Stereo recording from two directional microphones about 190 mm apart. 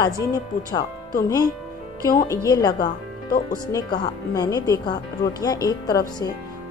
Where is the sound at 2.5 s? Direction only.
20° left (ahead or behind).